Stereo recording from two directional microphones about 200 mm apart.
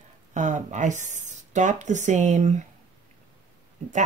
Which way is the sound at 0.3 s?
35° right (ahead or behind).